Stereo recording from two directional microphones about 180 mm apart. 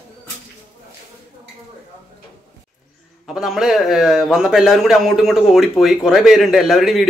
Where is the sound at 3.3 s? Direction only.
Centre (ahead or behind).